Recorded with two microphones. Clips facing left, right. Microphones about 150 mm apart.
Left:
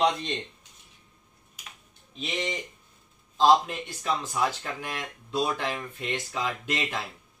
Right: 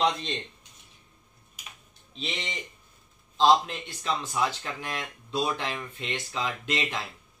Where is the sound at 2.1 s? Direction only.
10° left (ahead or behind).